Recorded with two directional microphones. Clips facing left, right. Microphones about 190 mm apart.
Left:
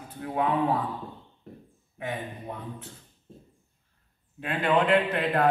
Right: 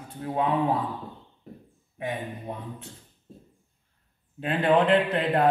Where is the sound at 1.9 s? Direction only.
20° right (ahead or behind).